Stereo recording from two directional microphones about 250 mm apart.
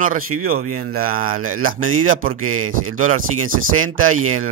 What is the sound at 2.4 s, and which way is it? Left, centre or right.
Speech, right.